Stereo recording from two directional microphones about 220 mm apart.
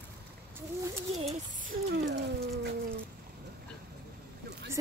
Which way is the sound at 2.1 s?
50° right (ahead or behind).